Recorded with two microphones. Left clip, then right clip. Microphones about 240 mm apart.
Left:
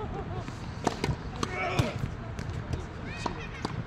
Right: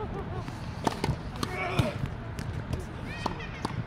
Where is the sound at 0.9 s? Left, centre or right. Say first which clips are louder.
Even; centre.